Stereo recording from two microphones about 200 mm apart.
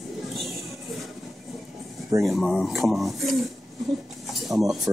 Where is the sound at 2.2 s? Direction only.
Centre (ahead or behind).